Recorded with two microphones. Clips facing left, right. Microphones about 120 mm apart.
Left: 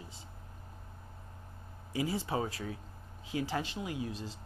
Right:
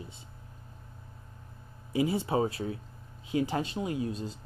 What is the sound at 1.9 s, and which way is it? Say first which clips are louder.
Speech: right 6 dB; 25° right (ahead or behind).